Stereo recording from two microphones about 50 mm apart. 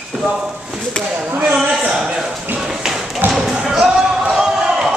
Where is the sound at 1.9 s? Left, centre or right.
Centre.